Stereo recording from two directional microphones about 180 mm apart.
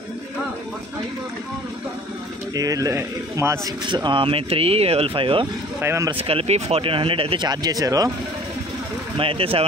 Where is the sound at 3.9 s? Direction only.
25° right (ahead or behind).